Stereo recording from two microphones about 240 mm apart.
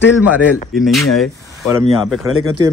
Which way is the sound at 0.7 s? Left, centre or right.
Centre.